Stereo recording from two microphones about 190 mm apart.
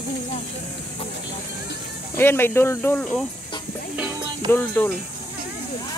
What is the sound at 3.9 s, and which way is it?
Music, 10° right (ahead or behind).